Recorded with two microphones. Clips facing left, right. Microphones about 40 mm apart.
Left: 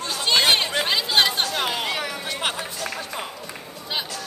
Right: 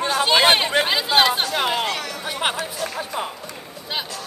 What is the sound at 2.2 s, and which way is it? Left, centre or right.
Speech, centre.